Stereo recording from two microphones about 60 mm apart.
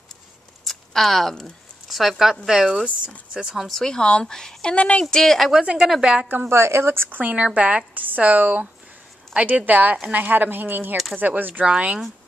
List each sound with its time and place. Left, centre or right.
0.7 s a woman's voice: centre
3.6 s speech: centre
5.1 s a woman's voice: centre
5.6 s a woman's voice: centre
6.5 s speech: right
7.2 s speech: right
11.6 s speech: centre